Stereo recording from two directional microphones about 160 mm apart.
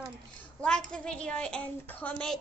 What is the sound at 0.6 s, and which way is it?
A woman's voice, 5° left (ahead or behind).